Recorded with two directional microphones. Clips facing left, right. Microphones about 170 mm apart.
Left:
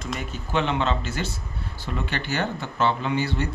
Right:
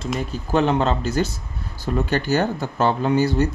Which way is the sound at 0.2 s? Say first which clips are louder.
Right 6 dB; 35° right (ahead or behind).